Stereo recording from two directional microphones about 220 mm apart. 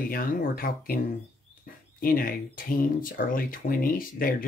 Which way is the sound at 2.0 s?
40° left (ahead or behind).